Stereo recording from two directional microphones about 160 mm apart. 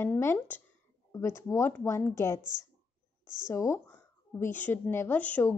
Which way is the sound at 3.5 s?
15° left (ahead or behind).